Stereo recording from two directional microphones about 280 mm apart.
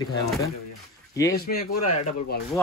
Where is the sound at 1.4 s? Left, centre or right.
Left.